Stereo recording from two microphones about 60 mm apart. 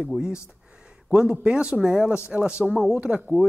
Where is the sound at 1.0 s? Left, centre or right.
Centre.